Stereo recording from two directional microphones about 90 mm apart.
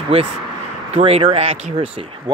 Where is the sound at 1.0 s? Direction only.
85° right.